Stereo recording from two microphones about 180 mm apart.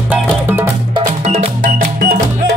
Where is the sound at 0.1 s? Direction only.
10° right (ahead or behind).